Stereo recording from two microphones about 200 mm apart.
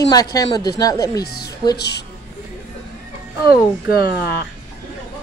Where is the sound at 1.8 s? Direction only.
55° left (ahead or behind).